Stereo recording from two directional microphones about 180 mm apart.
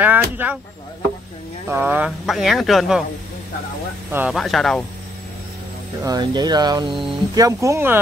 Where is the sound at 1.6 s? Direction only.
10° right (ahead or behind).